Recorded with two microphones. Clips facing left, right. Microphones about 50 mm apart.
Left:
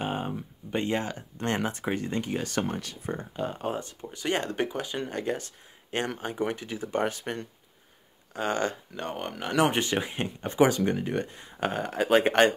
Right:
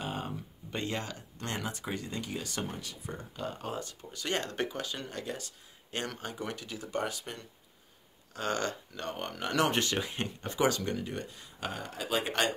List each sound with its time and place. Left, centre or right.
0.0 s speech: left
3.1 s speech: left
3.4 s speech: left
8.3 s speech: centre
11.0 s speech: left